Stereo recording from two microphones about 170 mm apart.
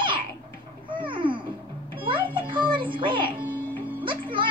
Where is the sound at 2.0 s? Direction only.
30° right (ahead or behind).